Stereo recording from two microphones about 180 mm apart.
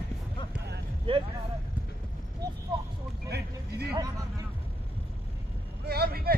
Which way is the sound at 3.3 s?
65° right (ahead or behind).